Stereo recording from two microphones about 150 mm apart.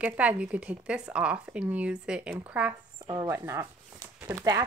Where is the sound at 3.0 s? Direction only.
25° right (ahead or behind).